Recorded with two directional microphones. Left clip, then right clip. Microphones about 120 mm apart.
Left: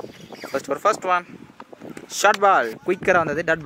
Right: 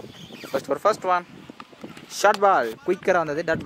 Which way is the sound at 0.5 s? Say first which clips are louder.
Left 1 dB; 15° left (ahead or behind).